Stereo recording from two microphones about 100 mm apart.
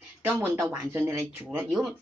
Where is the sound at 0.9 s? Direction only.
25° right (ahead or behind).